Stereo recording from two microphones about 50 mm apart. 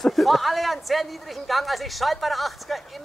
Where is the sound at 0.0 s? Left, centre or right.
Centre.